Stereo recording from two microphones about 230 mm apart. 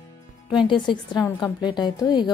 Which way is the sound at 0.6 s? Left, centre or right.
Left.